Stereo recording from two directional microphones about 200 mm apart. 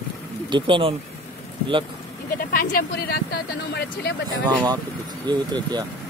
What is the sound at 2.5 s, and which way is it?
Speech, 45° left (ahead or behind).